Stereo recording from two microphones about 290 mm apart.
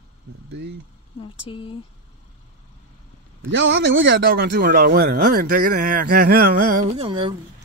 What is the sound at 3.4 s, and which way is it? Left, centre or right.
A man's voice, right.